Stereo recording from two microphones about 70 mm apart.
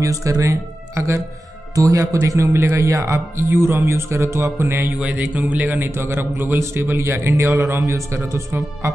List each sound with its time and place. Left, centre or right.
0.0 s a man's voice: right
5.0 s a man's voice: right